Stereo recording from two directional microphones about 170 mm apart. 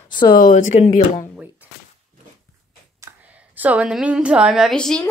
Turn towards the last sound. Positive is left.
turn(degrees=5)  # may be behind; listen again after turning